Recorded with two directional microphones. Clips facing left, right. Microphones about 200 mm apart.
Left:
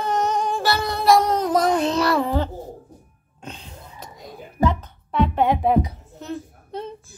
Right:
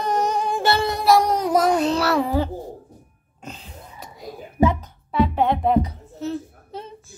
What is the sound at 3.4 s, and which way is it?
Cough, centre (ahead or behind).